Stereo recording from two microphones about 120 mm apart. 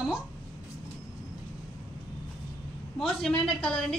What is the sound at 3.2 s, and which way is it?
Speech, 5° left (ahead or behind).